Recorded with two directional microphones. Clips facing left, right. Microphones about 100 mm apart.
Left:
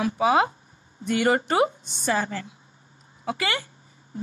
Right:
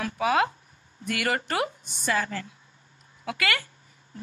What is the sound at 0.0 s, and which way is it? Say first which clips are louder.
A woman's voice: left 3 dB; 20° left (ahead or behind).